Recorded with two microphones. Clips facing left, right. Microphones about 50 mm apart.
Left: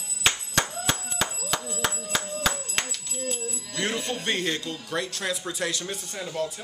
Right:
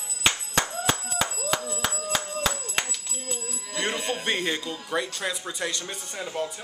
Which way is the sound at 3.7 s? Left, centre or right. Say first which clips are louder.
Right 1 dB; centre.